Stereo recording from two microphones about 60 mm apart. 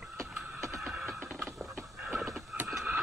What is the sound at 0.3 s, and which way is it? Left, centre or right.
Music, centre.